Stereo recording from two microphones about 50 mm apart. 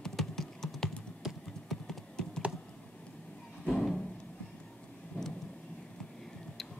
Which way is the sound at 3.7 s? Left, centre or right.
Centre.